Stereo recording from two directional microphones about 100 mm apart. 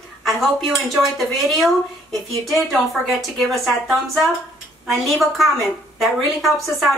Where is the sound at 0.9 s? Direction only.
Centre (ahead or behind).